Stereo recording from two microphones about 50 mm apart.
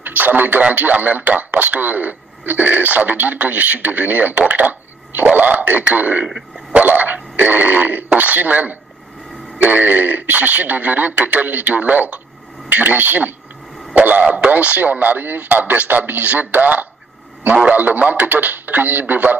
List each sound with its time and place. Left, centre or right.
0.0 s speech: right
6.7 s dog: right
7.3 s speech: right